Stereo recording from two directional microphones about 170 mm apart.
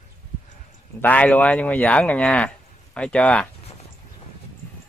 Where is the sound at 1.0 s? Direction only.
10° left (ahead or behind).